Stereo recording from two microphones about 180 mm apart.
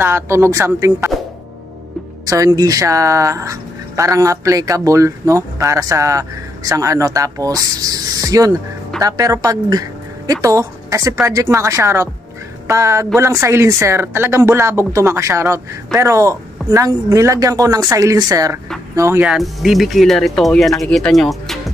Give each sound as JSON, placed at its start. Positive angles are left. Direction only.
{"t": 0.0, "sound": "speech", "side_deg": -15}
{"t": 2.2, "sound": "speech", "side_deg": -20}
{"t": 19.2, "sound": "speech", "side_deg": 0}